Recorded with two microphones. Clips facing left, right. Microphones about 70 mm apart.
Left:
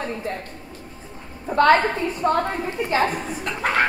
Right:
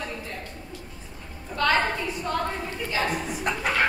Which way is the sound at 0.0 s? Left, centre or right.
Left.